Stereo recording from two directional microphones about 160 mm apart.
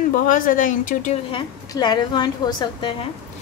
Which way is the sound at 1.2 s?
30° left (ahead or behind).